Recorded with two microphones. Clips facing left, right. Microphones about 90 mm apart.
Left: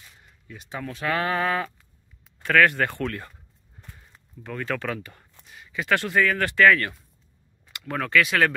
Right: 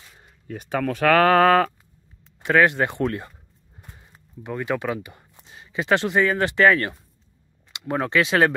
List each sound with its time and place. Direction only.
0.5 s speech: 55° right (ahead or behind)
1.3 s sheep: 50° right (ahead or behind)
2.4 s speech: 20° right (ahead or behind)